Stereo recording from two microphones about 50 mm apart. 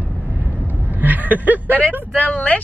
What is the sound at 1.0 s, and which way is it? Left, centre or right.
Speech, right.